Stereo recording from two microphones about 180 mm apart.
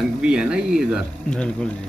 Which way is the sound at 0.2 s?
5° right (ahead or behind).